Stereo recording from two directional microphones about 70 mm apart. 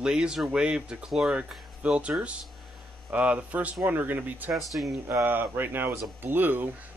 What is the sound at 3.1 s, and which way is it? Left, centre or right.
Speech, centre.